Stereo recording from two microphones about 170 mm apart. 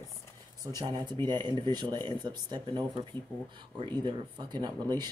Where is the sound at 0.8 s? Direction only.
25° right (ahead or behind).